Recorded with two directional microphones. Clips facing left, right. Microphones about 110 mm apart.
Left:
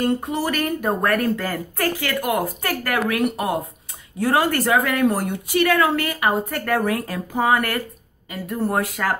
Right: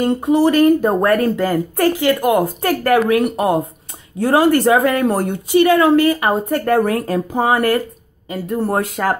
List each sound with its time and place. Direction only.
0.0 s speech: 20° right (ahead or behind); by 5.3 s 35° right (ahead or behind)
5.5 s speech: 20° right (ahead or behind)